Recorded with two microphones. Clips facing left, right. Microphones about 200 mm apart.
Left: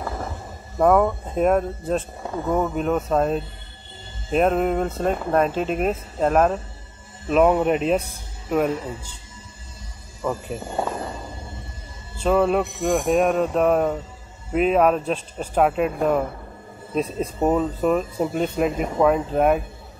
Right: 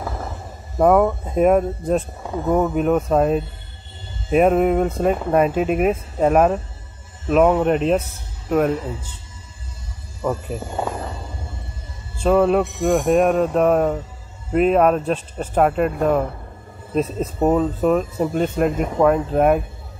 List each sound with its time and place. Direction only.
0.7 s speech: 5° right (ahead or behind)
12.2 s speech: centre (ahead or behind)